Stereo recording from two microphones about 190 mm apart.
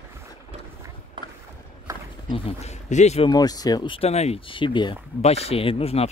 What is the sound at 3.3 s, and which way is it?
Speech, 20° left (ahead or behind).